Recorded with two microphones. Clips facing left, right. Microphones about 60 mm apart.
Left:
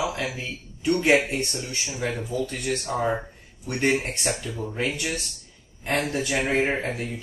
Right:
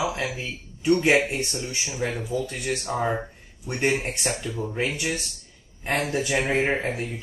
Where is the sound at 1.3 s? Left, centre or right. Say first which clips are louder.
Even; centre.